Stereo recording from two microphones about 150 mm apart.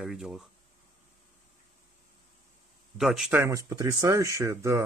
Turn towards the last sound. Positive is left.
turn(degrees=-20)  # may be behind; listen again after turning